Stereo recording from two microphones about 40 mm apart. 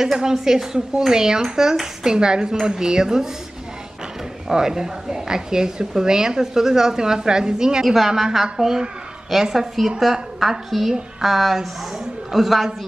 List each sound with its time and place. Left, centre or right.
0.0 s a woman's voice: centre
4.5 s a woman's voice: centre
7.8 s a woman's voice: centre